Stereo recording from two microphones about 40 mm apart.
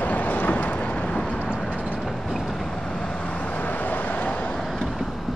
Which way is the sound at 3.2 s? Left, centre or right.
Left.